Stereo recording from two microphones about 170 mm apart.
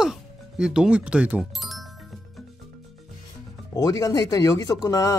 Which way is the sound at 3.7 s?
20° left (ahead or behind).